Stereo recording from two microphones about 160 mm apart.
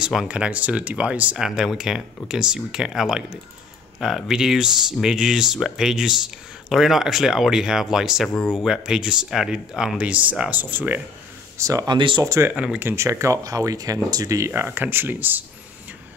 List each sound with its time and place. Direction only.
0.0 s speech: 5° right (ahead or behind)
8.4 s speech: 10° left (ahead or behind)
8.6 s speech: 5° right (ahead or behind)
11.5 s speech: 20° right (ahead or behind)
12.3 s speech: 15° right (ahead or behind)